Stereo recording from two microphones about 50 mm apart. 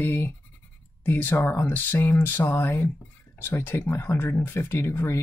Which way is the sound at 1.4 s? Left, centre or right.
Left.